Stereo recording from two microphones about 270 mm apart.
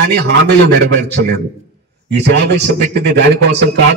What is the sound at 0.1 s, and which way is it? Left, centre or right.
A man's voice, right.